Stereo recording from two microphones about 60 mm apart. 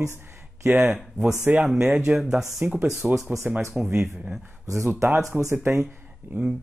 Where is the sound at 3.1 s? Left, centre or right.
Right.